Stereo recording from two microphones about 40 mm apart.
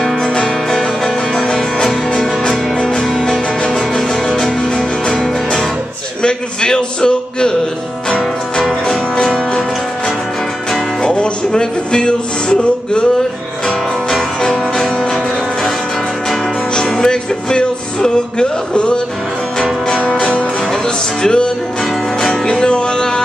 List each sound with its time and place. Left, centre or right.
1.0 s music: centre
6.2 s a sound: centre
8.8 s music: centre
11.0 s music: centre
13.7 s music: centre
16.9 s music: centre
20.0 s music: left